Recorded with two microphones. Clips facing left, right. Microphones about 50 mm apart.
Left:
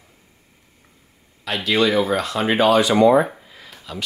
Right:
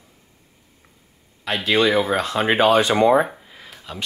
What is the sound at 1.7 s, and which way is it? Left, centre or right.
Speech, right.